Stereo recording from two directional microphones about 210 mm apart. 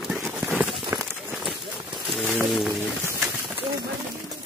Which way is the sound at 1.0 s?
Centre (ahead or behind).